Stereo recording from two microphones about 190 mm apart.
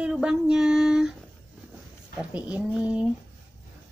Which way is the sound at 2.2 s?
5° right (ahead or behind).